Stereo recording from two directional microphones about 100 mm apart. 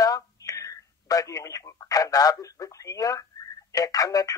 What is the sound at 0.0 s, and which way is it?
Speech, 35° left (ahead or behind).